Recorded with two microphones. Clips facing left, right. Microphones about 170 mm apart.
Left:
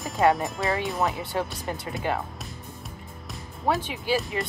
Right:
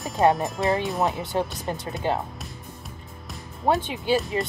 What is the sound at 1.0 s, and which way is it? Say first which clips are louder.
Speech: right 2 dB; 20° right (ahead or behind).